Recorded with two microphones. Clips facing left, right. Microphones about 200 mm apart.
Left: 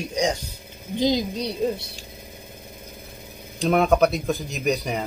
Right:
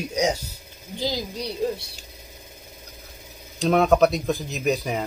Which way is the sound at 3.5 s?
Centre (ahead or behind).